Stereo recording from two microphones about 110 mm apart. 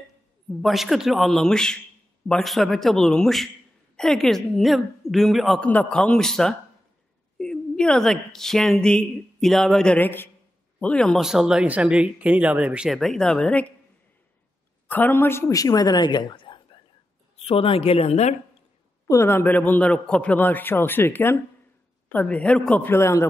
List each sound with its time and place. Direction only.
0.6 s a woman's voice: centre (ahead or behind)
11.1 s a woman's voice: 5° right (ahead or behind); by 13.7 s 10° left (ahead or behind)
14.9 s a woman's voice: 15° left (ahead or behind); by 16.6 s 45° left (ahead or behind)
17.5 s speech: 60° left (ahead or behind); by 18.3 s 75° left (ahead or behind)
19.0 s a man's voice: 25° left (ahead or behind)